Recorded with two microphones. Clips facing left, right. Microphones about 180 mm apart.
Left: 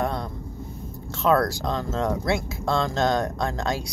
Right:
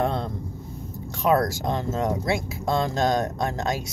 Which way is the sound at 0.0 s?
25° right (ahead or behind).